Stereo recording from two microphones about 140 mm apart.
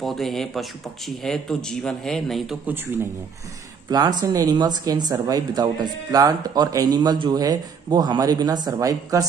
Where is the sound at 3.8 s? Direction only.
30° right (ahead or behind).